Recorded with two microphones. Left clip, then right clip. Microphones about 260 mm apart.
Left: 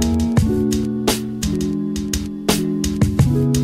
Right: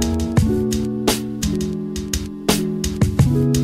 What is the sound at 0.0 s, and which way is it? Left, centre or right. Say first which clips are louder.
Music: left 1 dB; centre.